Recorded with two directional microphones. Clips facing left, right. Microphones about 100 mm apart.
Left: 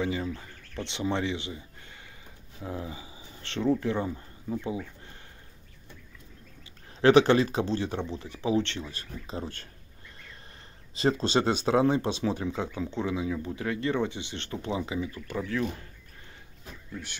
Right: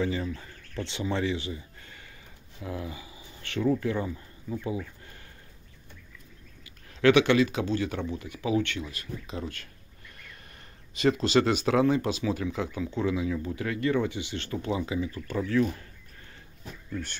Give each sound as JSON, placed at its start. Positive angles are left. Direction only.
{"t": 0.0, "sound": "speech", "side_deg": 20}
{"t": 6.9, "sound": "speech", "side_deg": 35}
{"t": 11.0, "sound": "speech", "side_deg": 30}